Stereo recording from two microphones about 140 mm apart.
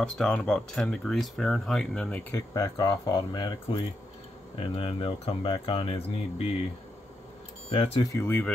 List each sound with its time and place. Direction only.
0.0 s speech: 5° left (ahead or behind)
2.3 s speech: 25° left (ahead or behind)
4.6 s speech: 40° left (ahead or behind)
7.7 s speech: 40° left (ahead or behind)
8.0 s speech: 20° left (ahead or behind)